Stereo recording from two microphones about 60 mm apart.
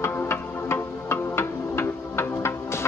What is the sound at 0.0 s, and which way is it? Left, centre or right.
Music, left.